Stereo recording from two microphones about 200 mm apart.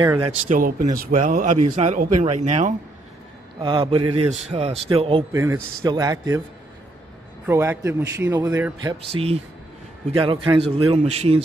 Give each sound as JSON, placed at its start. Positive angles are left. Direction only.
{"t": 0.0, "sound": "speech", "side_deg": -20}
{"t": 0.5, "sound": "speech", "side_deg": -45}
{"t": 3.6, "sound": "speech", "side_deg": -25}
{"t": 5.3, "sound": "a man's voice", "side_deg": -15}
{"t": 7.4, "sound": "a man's voice", "side_deg": -10}
{"t": 9.1, "sound": "speech", "side_deg": -90}
{"t": 10.1, "sound": "speech", "side_deg": -30}